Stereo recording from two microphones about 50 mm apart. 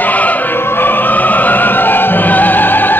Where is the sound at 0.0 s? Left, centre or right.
Left.